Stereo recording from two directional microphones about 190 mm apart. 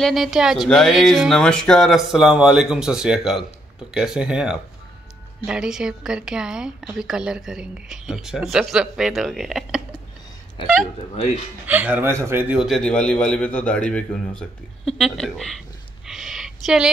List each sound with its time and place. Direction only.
0.0 s a woman's voice: centre (ahead or behind)
11.6 s a woman's voice: 10° right (ahead or behind)
16.1 s a sound: centre (ahead or behind)